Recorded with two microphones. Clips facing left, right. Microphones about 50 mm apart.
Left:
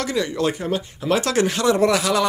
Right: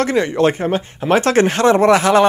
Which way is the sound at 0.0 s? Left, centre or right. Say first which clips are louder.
Right 7 dB; right.